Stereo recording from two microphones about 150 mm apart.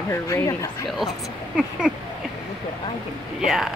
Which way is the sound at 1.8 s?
5° right (ahead or behind).